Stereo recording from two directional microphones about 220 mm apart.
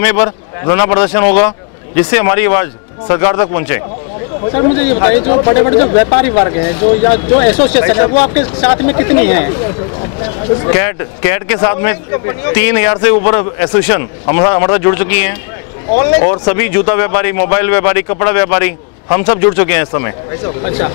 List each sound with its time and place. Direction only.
0.0 s speech: 10° left (ahead or behind)
4.5 s speech: 30° left (ahead or behind); by 9.5 s 15° left (ahead or behind)
10.7 s speech: 15° left (ahead or behind)